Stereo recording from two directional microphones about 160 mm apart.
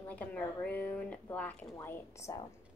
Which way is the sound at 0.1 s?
10° left (ahead or behind).